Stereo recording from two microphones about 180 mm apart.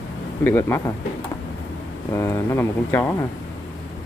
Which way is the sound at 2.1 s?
15° left (ahead or behind).